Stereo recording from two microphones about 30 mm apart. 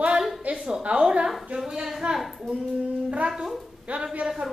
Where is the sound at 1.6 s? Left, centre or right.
Centre.